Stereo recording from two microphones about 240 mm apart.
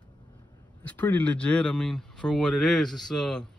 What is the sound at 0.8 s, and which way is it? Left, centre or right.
Speech, centre.